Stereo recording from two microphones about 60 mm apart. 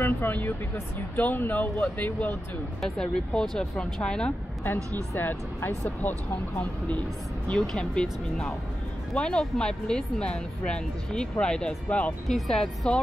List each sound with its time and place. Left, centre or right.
0.0 s speech: left
2.8 s speech: centre
5.1 s speech: left
7.6 s speech: centre
12.3 s speech: centre